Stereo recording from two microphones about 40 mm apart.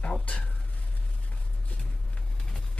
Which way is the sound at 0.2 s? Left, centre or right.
Left.